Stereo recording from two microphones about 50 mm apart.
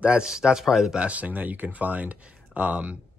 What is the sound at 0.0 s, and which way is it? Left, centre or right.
Speech, right.